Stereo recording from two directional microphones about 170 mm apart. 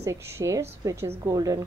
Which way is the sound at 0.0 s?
15° right (ahead or behind).